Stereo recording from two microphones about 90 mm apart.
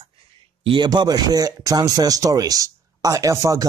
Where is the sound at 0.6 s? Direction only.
65° right (ahead or behind).